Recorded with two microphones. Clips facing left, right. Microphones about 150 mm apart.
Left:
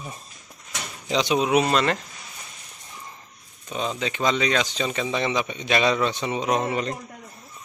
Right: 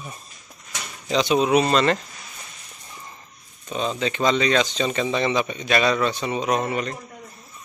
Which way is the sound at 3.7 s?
10° left (ahead or behind).